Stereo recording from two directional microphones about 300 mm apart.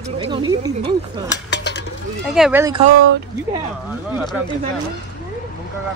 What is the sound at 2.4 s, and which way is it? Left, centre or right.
Speech, centre.